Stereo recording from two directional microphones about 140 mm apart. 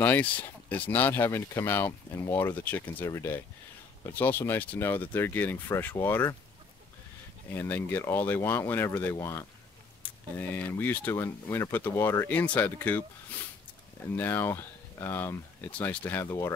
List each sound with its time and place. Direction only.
0.0 s speech: 10° left (ahead or behind)
7.4 s speech: 15° left (ahead or behind)
14.1 s speech: 15° left (ahead or behind)